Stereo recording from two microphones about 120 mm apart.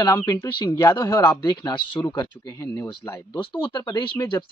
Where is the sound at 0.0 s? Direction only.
35° left (ahead or behind).